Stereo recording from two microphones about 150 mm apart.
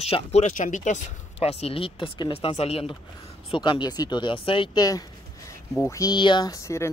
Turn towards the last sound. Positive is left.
turn(degrees=20)  # may be behind; listen again after turning